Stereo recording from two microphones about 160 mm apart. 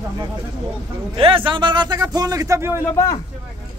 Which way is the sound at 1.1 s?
35° right (ahead or behind).